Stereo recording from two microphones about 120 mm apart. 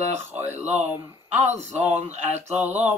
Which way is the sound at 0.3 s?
20° right (ahead or behind).